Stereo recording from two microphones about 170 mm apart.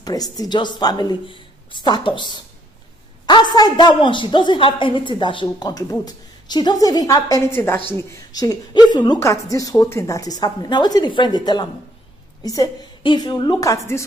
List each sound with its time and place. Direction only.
0.0 s a woman's voice: 20° left (ahead or behind)